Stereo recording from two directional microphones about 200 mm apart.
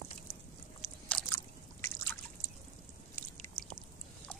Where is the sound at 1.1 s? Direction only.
5° left (ahead or behind).